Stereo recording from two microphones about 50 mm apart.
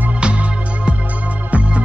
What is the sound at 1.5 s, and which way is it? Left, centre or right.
Organ, right.